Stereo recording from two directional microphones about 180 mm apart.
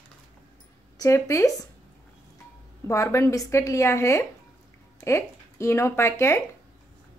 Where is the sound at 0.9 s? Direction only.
20° left (ahead or behind).